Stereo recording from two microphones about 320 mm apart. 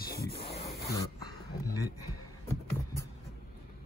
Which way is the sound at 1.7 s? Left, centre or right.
Right.